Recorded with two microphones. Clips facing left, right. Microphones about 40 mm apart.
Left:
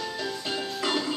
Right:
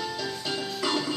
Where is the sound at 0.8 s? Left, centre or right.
Centre.